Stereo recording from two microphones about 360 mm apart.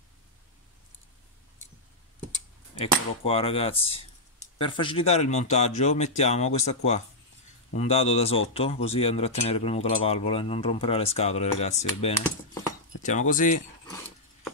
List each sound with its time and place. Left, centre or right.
2.8 s speech: centre
11.6 s cutlery: centre
13.3 s cutlery: left